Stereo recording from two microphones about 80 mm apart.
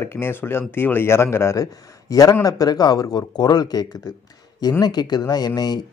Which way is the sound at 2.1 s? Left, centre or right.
Left.